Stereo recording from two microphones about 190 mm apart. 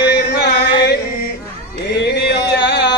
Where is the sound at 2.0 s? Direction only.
60° left (ahead or behind).